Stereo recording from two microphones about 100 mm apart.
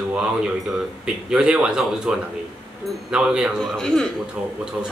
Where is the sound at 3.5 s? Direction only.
5° left (ahead or behind).